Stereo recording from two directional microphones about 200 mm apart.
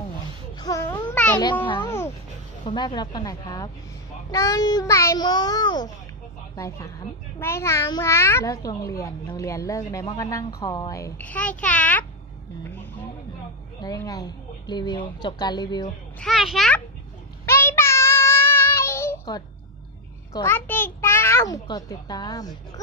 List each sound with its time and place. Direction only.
0.6 s babbling: 15° left (ahead or behind)
1.4 s a child's voice: 25° left (ahead or behind)
1.9 s a sound: 15° left (ahead or behind)
2.6 s a child's voice: 20° left (ahead or behind); by 12.1 s 5° left (ahead or behind)
13.7 s a woman's voice: 20° left (ahead or behind)
16.2 s a child's voice: centre (ahead or behind)
17.5 s child singing: 10° left (ahead or behind)
20.3 s a child's voice: 10° left (ahead or behind)